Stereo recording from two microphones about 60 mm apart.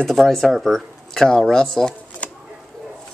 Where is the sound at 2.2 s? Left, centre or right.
Left.